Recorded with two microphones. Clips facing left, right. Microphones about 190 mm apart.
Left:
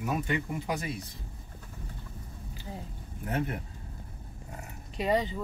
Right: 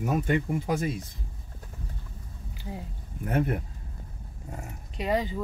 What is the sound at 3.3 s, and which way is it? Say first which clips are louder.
Speech: right 5 dB; 50° right (ahead or behind).